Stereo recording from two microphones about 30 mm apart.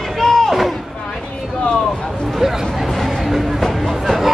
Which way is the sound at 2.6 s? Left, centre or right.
Centre.